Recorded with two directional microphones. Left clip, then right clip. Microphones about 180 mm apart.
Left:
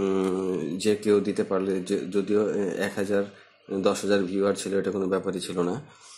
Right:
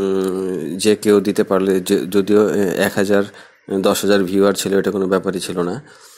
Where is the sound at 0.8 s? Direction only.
35° right (ahead or behind).